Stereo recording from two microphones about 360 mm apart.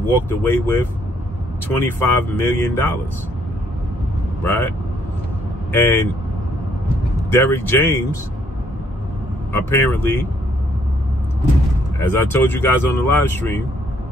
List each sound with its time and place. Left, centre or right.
0.0 s speech: centre
1.7 s speech: centre
4.4 s speech: centre
7.2 s speech: centre
9.5 s speech: centre
12.0 s speech: centre